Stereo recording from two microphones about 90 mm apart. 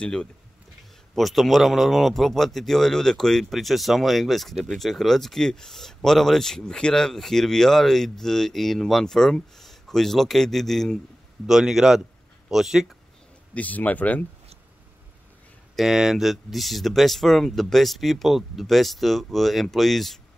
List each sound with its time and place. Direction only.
0.0 s a man's voice: 10° left (ahead or behind)
13.6 s speech: 15° left (ahead or behind)
15.7 s a man's voice: 5° right (ahead or behind)